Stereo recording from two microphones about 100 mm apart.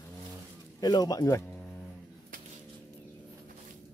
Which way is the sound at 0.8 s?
40° left (ahead or behind).